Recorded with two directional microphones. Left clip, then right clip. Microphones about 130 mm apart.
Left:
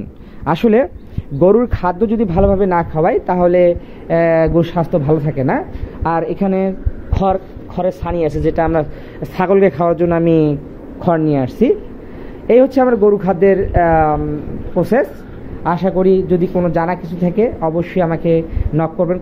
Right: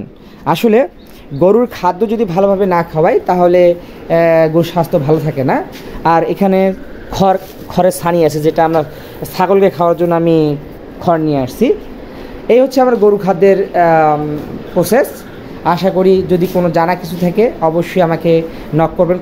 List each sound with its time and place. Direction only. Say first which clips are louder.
0.5 s speech: right 2 dB; 20° right (ahead or behind)
1.4 s speech: right 2 dB; 10° right (ahead or behind)
6.0 s speech: right 6 dB; 50° right (ahead or behind)
7.1 s speech: right 4 dB; 90° right; by 8.3 s 65° right (ahead or behind)
8.5 s speech: right 4 dB; 20° right (ahead or behind)